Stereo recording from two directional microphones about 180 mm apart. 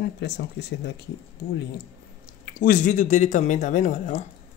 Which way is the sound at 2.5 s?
50° left (ahead or behind).